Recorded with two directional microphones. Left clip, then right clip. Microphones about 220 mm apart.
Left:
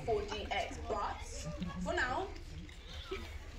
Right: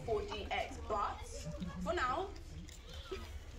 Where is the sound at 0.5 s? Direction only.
25° right (ahead or behind).